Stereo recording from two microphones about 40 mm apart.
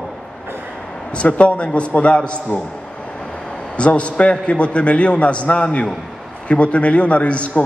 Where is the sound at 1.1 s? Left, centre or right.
Left.